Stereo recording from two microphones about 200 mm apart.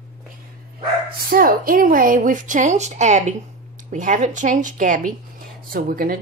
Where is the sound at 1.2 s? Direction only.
45° right (ahead or behind).